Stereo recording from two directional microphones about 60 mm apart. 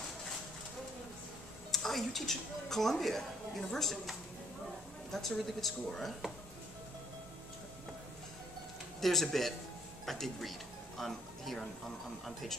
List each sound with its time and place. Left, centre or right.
1.7 s speech: centre
9.0 s speech: centre